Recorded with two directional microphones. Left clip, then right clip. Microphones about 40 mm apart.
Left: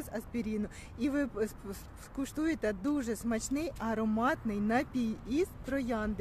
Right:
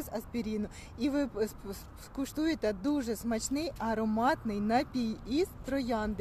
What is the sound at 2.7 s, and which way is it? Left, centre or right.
Speech, left.